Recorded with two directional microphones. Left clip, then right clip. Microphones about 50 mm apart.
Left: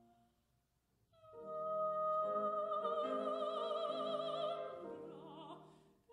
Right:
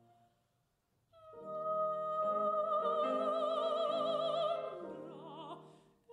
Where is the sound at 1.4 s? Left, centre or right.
Centre.